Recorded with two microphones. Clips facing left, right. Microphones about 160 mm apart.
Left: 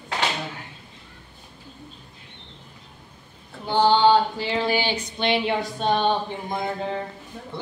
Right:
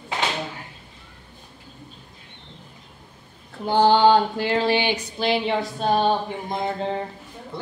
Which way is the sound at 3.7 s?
45° right (ahead or behind).